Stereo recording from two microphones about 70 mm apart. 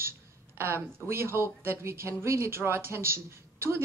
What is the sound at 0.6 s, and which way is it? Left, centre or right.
Speech, right.